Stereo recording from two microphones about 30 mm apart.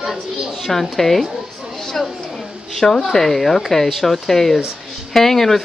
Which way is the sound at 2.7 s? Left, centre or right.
Centre.